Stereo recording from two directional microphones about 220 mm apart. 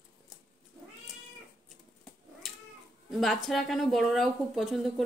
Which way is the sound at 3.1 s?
Centre (ahead or behind).